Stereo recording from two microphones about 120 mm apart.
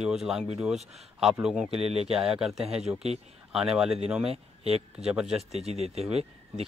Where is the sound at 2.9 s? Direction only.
25° right (ahead or behind).